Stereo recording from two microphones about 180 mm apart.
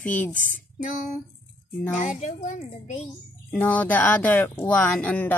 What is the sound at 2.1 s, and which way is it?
Music, 40° left (ahead or behind).